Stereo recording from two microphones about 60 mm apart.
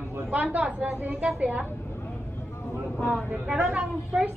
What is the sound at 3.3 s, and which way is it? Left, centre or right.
Speech, centre.